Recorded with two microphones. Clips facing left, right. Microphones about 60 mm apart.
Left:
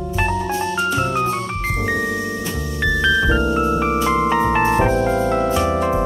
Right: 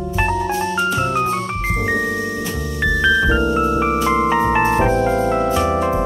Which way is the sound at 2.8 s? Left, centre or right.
Centre.